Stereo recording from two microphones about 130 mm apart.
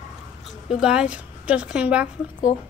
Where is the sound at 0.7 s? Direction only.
5° right (ahead or behind).